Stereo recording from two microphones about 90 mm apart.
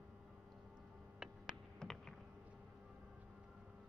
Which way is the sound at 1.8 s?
5° left (ahead or behind).